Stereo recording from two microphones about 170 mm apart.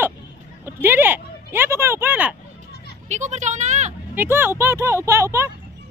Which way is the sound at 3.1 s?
45° right (ahead or behind).